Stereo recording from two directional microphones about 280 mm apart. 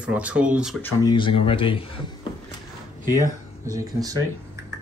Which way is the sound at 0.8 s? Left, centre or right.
Centre.